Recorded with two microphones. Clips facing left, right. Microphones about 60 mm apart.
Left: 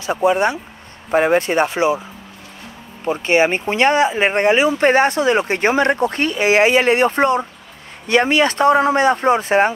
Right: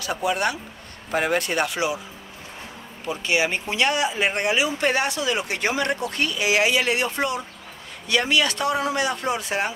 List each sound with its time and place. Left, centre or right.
0.0 s speech: left
3.1 s speech: left